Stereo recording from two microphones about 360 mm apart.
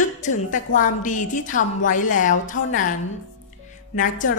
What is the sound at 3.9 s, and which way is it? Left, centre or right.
Speech, left.